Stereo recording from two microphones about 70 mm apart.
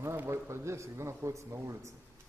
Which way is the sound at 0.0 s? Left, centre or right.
Right.